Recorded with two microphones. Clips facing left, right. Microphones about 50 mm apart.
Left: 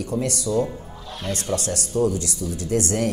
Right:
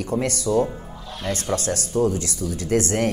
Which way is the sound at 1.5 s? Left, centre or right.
Right.